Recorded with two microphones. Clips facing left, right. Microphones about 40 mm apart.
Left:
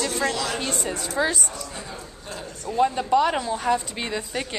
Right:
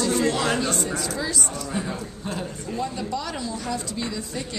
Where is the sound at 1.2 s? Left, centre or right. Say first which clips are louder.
Left 10 dB; left.